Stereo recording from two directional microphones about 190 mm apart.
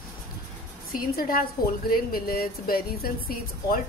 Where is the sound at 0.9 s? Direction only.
50° left (ahead or behind).